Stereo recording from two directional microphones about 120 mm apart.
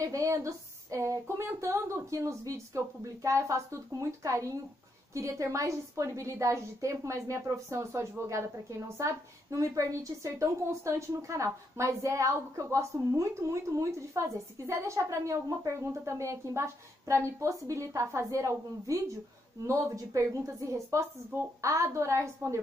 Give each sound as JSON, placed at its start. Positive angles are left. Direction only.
{"t": 0.0, "sound": "a woman's voice", "side_deg": -30}